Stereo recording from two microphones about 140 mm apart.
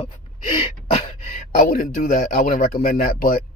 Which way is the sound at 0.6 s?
50° left (ahead or behind).